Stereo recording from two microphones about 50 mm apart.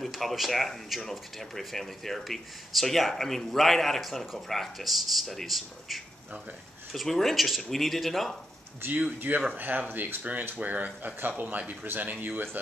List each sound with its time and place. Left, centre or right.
0.0 s speech: centre
9.3 s speech: right